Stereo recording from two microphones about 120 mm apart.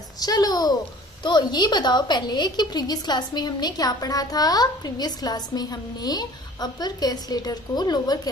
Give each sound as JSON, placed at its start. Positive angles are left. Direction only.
{"t": 0.2, "sound": "a woman's voice", "side_deg": 30}